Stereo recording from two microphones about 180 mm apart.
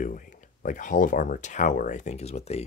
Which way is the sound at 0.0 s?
50° left (ahead or behind).